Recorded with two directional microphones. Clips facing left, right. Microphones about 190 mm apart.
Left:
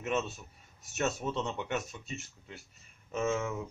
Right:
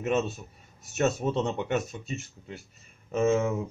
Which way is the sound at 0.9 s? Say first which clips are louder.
Right 7 dB; 40° right (ahead or behind).